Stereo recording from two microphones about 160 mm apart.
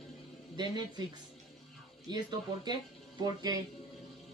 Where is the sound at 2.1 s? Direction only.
25° right (ahead or behind).